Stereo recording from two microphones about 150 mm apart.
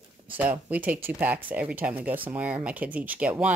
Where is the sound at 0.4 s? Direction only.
10° right (ahead or behind).